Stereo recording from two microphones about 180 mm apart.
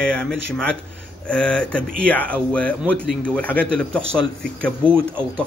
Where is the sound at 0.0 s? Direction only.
5° left (ahead or behind).